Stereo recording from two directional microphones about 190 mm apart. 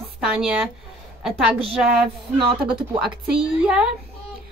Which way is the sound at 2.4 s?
30° right (ahead or behind).